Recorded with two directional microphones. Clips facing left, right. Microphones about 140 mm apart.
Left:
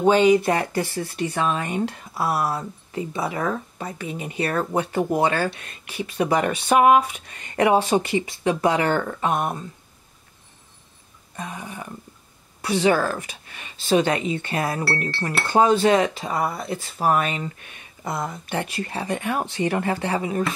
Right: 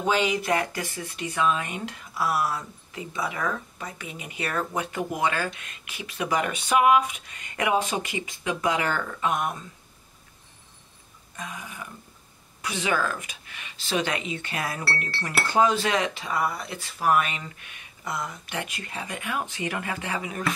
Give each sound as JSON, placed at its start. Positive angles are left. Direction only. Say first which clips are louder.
{"t": 0.0, "sound": "speech", "louder": "left 9 dB", "side_deg": 30}
{"t": 11.3, "sound": "speech", "louder": "left 5 dB", "side_deg": 35}